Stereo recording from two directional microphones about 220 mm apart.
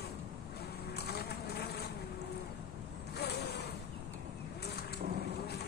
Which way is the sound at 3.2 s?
45° left (ahead or behind).